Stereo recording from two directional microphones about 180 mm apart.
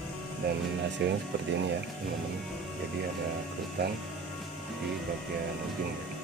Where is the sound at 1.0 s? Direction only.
70° right (ahead or behind).